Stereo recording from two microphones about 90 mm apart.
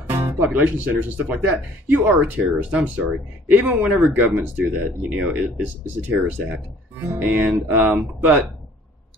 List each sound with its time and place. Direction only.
0.1 s speech: 20° right (ahead or behind)
7.1 s speech: 15° right (ahead or behind)